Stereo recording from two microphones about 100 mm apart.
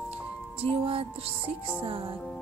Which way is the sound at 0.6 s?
70° right (ahead or behind).